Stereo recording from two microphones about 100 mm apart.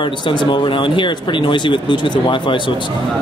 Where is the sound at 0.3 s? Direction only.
55° left (ahead or behind).